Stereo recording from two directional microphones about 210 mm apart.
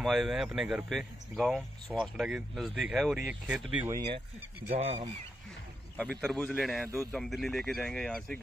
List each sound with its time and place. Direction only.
0.0 s speech: centre (ahead or behind)
4.6 s speech: 30° right (ahead or behind)
5.9 s speech: centre (ahead or behind)